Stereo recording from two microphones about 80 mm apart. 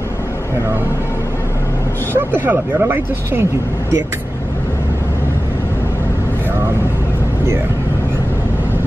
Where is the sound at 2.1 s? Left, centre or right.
Right.